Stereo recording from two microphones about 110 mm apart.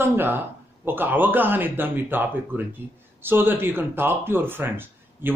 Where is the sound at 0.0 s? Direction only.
20° right (ahead or behind).